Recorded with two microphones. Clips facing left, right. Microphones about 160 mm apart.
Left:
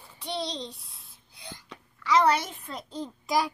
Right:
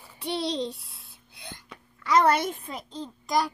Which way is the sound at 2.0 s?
50° right (ahead or behind).